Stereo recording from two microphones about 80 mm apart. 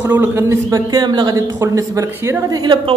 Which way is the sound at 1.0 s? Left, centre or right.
Right.